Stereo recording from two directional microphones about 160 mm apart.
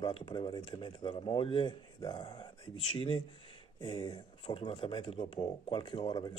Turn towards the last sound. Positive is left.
turn(degrees=30)  # may be behind; listen again after turning